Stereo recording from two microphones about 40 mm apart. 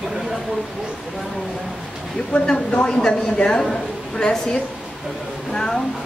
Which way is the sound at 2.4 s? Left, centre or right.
Left.